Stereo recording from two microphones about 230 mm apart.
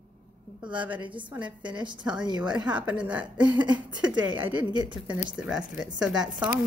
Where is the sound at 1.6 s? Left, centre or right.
Centre.